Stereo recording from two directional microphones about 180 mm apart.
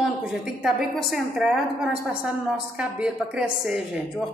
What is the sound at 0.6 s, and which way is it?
A woman's voice, centre (ahead or behind).